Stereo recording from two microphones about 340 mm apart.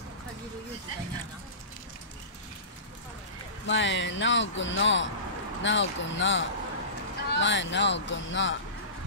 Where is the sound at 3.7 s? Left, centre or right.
Left.